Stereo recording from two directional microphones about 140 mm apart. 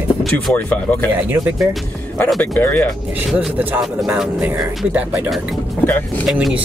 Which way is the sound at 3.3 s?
10° right (ahead or behind).